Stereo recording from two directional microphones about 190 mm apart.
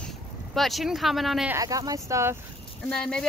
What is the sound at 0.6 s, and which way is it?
Speech, centre (ahead or behind).